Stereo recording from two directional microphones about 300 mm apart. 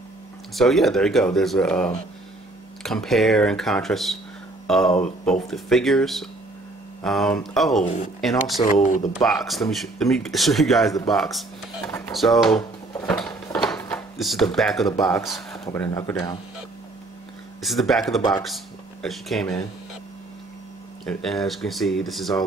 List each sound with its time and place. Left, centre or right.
0.6 s speech: centre
8.6 s speech: left
9.1 s speech: centre
11.9 s drawer open or close: centre
13.7 s speech: centre
17.6 s speech: centre
21.0 s speech: centre